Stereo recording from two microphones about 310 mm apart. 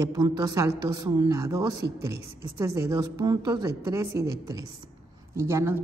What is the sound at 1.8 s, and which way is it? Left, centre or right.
Speech, right.